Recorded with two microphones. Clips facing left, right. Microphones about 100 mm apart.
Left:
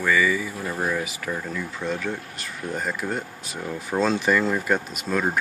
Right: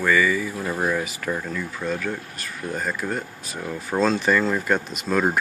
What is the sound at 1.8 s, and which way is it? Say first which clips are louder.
Speech: right 1 dB; 20° left (ahead or behind).